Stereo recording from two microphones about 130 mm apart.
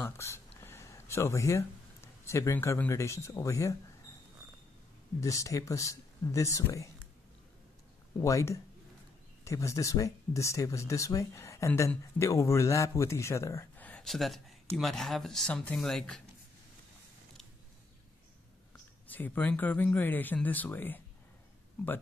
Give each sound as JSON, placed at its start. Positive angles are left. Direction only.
{"t": 0.0, "sound": "speech", "side_deg": 20}
{"t": 0.6, "sound": "a sound", "side_deg": 20}
{"t": 2.2, "sound": "speech", "side_deg": 20}
{"t": 5.2, "sound": "speech", "side_deg": 25}
{"t": 8.2, "sound": "speech", "side_deg": 25}
{"t": 13.8, "sound": "speech", "side_deg": 5}
{"t": 19.0, "sound": "speech", "side_deg": 15}